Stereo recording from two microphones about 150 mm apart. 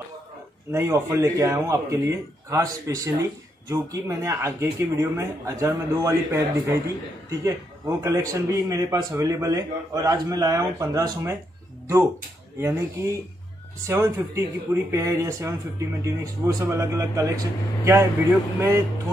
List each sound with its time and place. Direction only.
0.7 s speech: 15° right (ahead or behind)
12.5 s speech: 20° right (ahead or behind)